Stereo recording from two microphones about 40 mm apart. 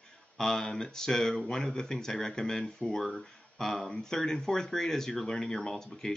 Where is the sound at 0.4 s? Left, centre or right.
Centre.